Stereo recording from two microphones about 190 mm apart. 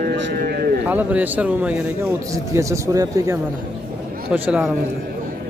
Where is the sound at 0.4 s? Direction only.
55° right (ahead or behind).